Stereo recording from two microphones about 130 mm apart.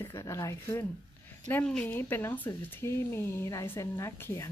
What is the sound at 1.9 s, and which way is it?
Speech, 15° left (ahead or behind).